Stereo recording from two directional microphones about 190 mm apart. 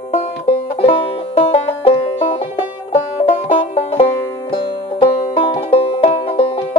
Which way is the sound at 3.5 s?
30° left (ahead or behind).